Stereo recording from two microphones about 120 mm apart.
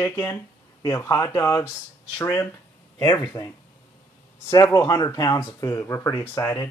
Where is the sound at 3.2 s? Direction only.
30° left (ahead or behind).